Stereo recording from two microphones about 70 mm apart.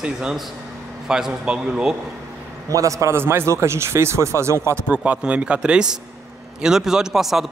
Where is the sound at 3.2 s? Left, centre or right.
Right.